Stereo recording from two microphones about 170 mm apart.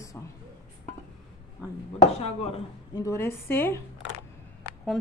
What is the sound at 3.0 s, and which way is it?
Speech, 15° left (ahead or behind).